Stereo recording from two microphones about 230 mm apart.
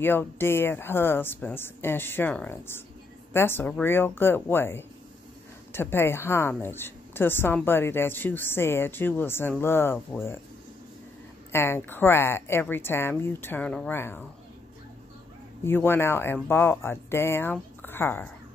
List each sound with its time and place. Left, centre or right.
0.0 s a woman's voice: centre
11.5 s a woman's voice: centre
15.6 s a woman's voice: centre